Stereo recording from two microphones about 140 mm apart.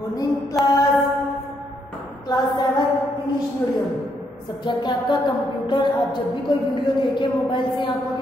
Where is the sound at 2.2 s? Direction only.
30° left (ahead or behind).